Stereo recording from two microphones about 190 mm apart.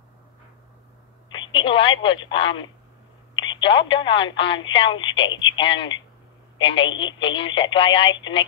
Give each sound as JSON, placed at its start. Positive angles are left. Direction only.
{"t": 1.3, "sound": "speech", "side_deg": 25}